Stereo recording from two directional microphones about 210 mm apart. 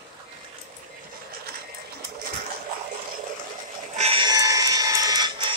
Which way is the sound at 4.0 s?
25° right (ahead or behind).